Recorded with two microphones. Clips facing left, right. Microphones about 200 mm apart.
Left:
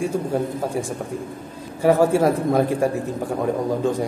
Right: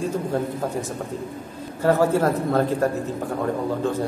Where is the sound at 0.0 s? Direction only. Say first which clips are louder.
Left 2 dB; 10° left (ahead or behind).